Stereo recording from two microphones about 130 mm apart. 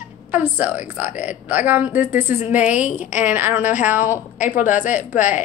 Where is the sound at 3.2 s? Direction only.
15° right (ahead or behind).